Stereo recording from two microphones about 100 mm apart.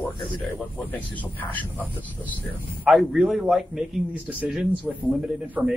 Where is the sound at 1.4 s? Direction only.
15° left (ahead or behind).